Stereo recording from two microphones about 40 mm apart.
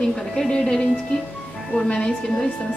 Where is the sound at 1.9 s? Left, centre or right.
Centre.